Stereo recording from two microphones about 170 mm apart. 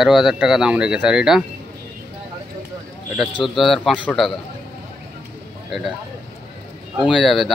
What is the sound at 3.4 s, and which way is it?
Speech, centre (ahead or behind).